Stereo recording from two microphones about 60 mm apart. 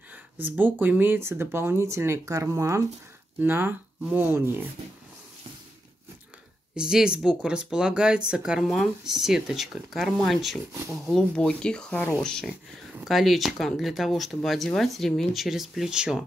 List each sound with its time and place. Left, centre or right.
0.1 s speech: right
3.3 s speech: right
6.7 s speech: centre
8.6 s speech: centre
10.7 s speech: right
11.3 s speech: centre
13.0 s speech: centre